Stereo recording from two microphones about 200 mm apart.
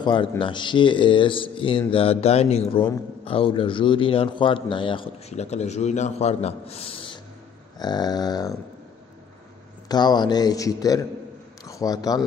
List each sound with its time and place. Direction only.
0.0 s a man's voice: 25° left (ahead or behind)
9.8 s a man's voice: 20° left (ahead or behind)